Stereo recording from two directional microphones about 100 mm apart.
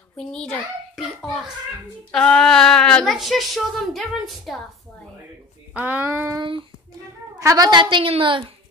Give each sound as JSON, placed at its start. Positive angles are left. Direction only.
{"t": 0.2, "sound": "a woman's voice", "side_deg": 5}
{"t": 3.1, "sound": "a woman's voice", "side_deg": 0}
{"t": 5.8, "sound": "speech", "side_deg": -15}
{"t": 6.3, "sound": "a child's voice", "side_deg": -55}
{"t": 7.3, "sound": "a woman's voice", "side_deg": -35}